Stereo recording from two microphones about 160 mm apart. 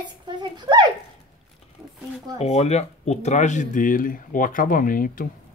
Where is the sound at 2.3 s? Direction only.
40° left (ahead or behind).